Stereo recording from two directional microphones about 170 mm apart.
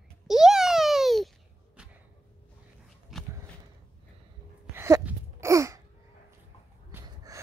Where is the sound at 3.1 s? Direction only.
Centre (ahead or behind).